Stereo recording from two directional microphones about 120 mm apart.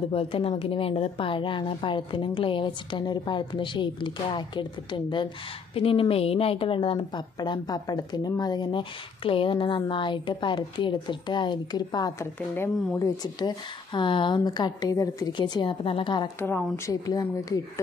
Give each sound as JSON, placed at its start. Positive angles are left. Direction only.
{"t": 0.1, "sound": "a woman's voice", "side_deg": 50}
{"t": 12.5, "sound": "speech", "side_deg": 20}
{"t": 13.2, "sound": "a woman's voice", "side_deg": 35}
{"t": 16.3, "sound": "speech", "side_deg": 20}